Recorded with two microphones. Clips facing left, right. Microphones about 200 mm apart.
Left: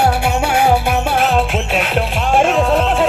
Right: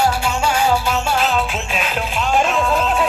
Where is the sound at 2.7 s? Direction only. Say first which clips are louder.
Left 4 dB; 70° left (ahead or behind).